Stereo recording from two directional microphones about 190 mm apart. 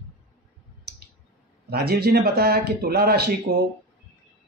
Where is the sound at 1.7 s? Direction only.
55° right (ahead or behind).